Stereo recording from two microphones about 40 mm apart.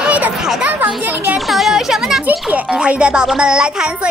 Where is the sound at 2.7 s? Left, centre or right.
Right.